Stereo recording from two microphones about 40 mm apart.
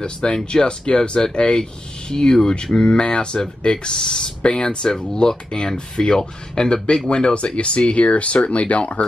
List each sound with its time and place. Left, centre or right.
0.0 s speech: left